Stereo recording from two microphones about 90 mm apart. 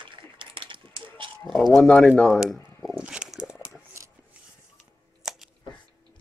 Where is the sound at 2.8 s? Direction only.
10° right (ahead or behind).